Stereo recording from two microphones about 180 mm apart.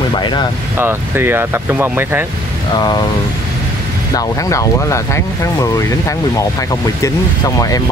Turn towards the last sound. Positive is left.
turn(degrees=20)  # may be behind; listen again after turning